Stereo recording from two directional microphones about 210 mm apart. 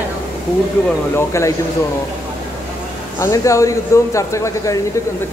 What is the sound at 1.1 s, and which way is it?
Speech, 15° left (ahead or behind).